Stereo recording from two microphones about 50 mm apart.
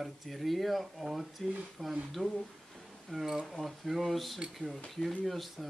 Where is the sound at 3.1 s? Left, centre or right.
Centre.